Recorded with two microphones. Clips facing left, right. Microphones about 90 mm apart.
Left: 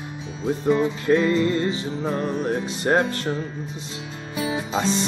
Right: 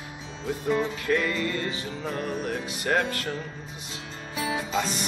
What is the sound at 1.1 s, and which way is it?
Music, 25° left (ahead or behind).